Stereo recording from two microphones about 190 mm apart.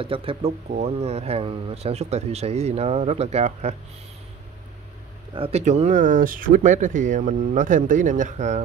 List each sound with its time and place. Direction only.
0.0 s speech: 30° right (ahead or behind)
5.3 s speech: 30° right (ahead or behind)